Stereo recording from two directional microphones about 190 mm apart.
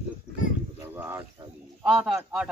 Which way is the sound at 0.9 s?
15° right (ahead or behind).